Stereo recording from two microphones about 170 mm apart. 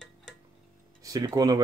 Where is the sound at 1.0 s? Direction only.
20° right (ahead or behind).